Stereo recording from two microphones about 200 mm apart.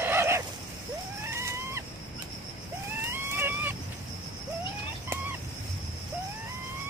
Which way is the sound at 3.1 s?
10° right (ahead or behind).